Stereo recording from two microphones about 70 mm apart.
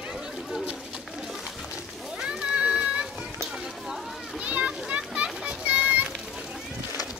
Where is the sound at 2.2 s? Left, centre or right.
Centre.